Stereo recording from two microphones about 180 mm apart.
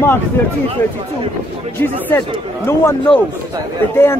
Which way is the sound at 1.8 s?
10° left (ahead or behind).